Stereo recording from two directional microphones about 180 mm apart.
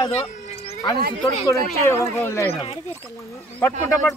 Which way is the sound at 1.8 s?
15° left (ahead or behind).